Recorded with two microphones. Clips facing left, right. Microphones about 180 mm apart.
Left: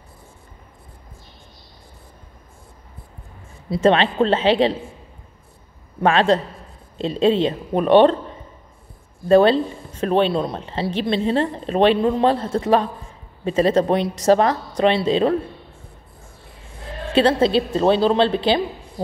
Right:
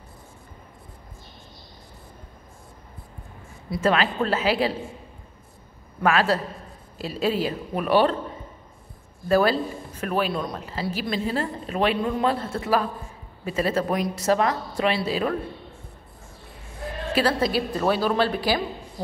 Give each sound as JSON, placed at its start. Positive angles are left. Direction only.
{"t": 3.7, "sound": "a woman's voice", "side_deg": 30}
{"t": 5.9, "sound": "a woman's voice", "side_deg": 25}
{"t": 9.3, "sound": "a woman's voice", "side_deg": 25}
{"t": 17.1, "sound": "a woman's voice", "side_deg": 25}